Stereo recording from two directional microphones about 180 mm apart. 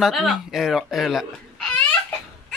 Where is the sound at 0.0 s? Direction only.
Centre (ahead or behind).